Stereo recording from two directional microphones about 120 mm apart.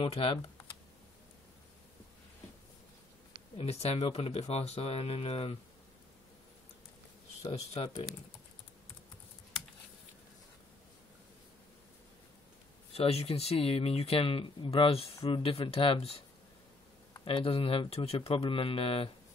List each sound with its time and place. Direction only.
0.0 s speech: 50° left (ahead or behind)
3.5 s speech: 55° left (ahead or behind)
7.4 s speech: 55° left (ahead or behind)
12.9 s speech: 55° left (ahead or behind)
17.2 s speech: 50° left (ahead or behind)